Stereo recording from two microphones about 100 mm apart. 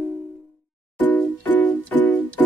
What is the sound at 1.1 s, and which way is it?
Music, 20° left (ahead or behind).